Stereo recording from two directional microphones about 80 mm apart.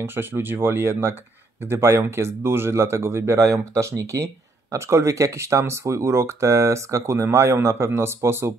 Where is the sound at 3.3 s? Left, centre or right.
Right.